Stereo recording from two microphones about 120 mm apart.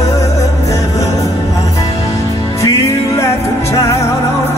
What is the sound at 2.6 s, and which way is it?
Music, 25° left (ahead or behind).